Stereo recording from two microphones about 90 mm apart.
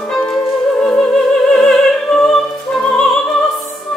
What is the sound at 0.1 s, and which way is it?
Music, 10° left (ahead or behind).